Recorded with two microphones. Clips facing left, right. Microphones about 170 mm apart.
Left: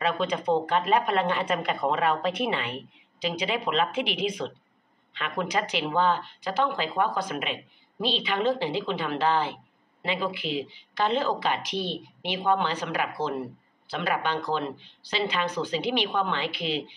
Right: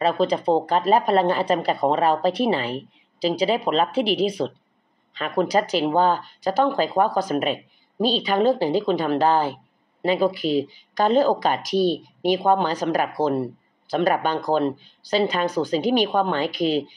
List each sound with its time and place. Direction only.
0.0 s a woman's voice: 35° right (ahead or behind)